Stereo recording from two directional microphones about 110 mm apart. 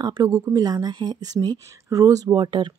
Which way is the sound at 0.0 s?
30° right (ahead or behind).